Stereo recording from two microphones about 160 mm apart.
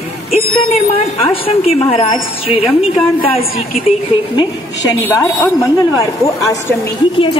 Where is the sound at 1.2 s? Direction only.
35° left (ahead or behind).